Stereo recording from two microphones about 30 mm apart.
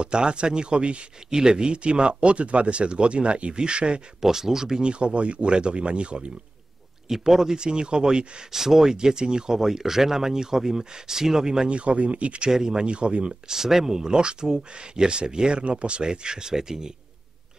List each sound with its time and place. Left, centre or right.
0.0 s speech: right
1.3 s speech: right
4.2 s speech: centre
4.8 s speech: right
7.1 s speech: centre
7.5 s speech: right
8.5 s speech: centre
11.6 s speech: right
12.4 s speech: centre
12.8 s speech: right
13.5 s speech: centre
15.6 s speech: right; by 16.9 s centre